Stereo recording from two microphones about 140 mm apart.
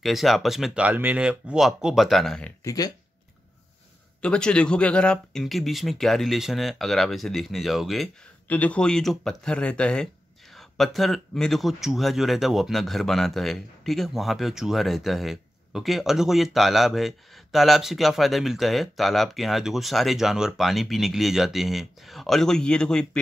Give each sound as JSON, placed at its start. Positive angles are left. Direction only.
{"t": 0.0, "sound": "speech", "side_deg": 0}
{"t": 2.6, "sound": "speech", "side_deg": 25}
{"t": 4.2, "sound": "speech", "side_deg": 5}
{"t": 8.5, "sound": "speech", "side_deg": 10}